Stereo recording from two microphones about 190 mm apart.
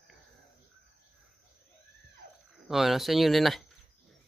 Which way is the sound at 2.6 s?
Centre (ahead or behind).